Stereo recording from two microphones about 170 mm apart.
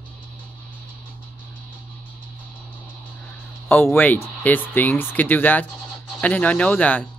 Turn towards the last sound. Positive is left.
turn(degrees=10)  # may be behind; listen again after turning